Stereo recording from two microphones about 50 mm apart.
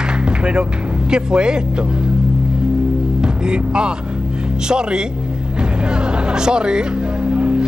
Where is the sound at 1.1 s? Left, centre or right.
Centre.